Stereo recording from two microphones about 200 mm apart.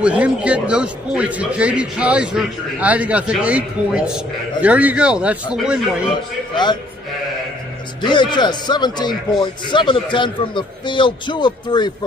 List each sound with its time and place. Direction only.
0.0 s a man's voice: 5° right (ahead or behind)
6.5 s speech: 20° left (ahead or behind)
8.0 s speech: 20° left (ahead or behind)